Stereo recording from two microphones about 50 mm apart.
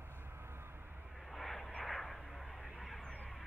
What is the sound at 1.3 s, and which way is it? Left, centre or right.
Vehicle, centre.